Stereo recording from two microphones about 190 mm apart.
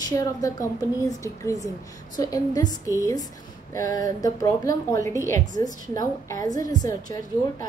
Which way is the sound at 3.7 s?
20° left (ahead or behind).